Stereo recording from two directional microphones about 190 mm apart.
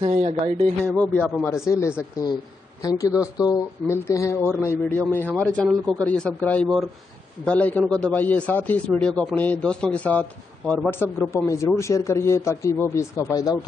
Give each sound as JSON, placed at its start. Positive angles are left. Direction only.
{"t": 0.0, "sound": "speech", "side_deg": -35}
{"t": 0.8, "sound": "a man's voice", "side_deg": 5}